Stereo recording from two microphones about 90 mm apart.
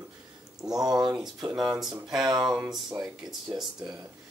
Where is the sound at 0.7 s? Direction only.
45° right (ahead or behind).